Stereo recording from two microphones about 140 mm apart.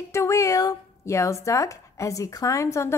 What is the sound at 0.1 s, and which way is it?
A woman's voice, 20° left (ahead or behind).